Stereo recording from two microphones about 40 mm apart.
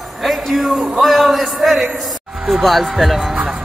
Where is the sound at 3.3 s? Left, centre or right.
Centre.